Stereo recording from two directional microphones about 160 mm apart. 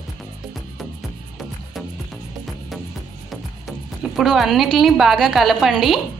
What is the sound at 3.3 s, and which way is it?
Speech, centre (ahead or behind).